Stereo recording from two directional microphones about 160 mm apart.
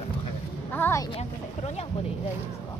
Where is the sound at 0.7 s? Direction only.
10° left (ahead or behind).